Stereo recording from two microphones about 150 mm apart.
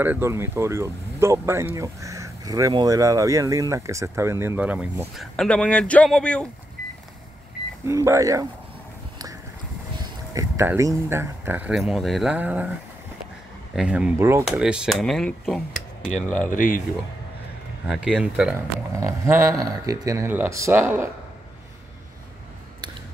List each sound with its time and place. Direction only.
0.0 s speech: 15° right (ahead or behind); by 6.5 s 5° left (ahead or behind)
7.8 s speech: 20° right (ahead or behind)
10.3 s speech: 20° right (ahead or behind)
13.7 s speech: 5° right (ahead or behind)
14.1 s speech: 20° right (ahead or behind)
14.4 s speech: 5° right (ahead or behind)
16.4 s speech: 60° left (ahead or behind)
17.8 s speech: 5° right (ahead or behind)
18.9 s speech: 20° right (ahead or behind)